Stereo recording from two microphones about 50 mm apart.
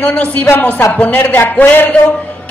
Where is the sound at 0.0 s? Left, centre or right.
Left.